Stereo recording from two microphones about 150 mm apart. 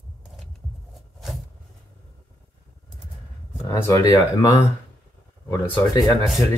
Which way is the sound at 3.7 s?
20° left (ahead or behind).